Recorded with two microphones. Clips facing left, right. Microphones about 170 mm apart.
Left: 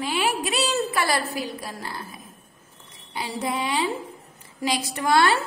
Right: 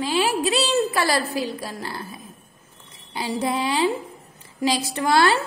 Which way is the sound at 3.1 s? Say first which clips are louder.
Right 4 dB; 30° right (ahead or behind).